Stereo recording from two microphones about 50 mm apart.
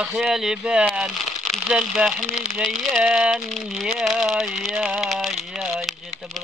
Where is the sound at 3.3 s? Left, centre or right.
Centre.